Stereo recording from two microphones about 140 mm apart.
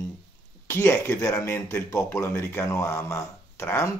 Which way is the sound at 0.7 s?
15° left (ahead or behind).